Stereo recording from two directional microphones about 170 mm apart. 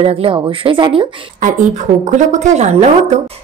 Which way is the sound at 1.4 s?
45° right (ahead or behind).